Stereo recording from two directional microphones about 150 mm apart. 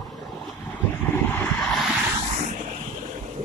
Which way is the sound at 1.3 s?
5° left (ahead or behind).